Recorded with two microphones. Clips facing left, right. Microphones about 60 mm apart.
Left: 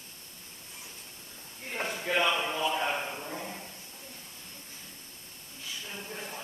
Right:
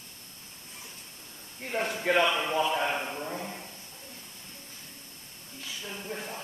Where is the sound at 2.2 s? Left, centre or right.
Centre.